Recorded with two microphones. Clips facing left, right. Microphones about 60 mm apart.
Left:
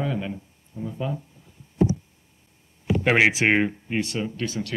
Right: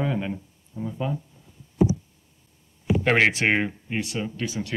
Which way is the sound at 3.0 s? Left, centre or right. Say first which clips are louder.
Left 1 dB; centre.